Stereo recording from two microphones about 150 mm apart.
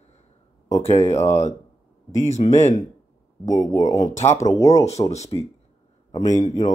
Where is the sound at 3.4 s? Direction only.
20° left (ahead or behind).